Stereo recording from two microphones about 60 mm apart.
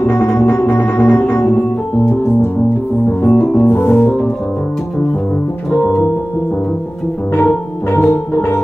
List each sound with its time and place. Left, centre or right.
0.0 s music: left
3.1 s organ: left
7.3 s music: left